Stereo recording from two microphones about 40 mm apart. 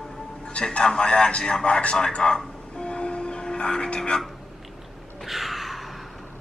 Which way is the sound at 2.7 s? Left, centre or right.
Left.